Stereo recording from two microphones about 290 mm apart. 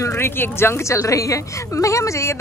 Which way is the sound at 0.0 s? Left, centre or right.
Centre.